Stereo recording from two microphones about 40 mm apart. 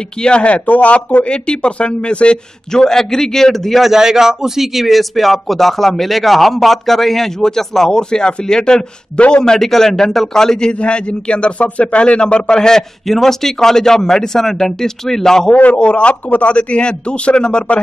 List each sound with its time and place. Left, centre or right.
0.2 s a man's voice: left
1.3 s a man's voice: left
2.7 s a man's voice: centre
3.8 s speech: centre; by 9.4 s left
9.4 s a man's voice: centre
15.5 s a man's voice: left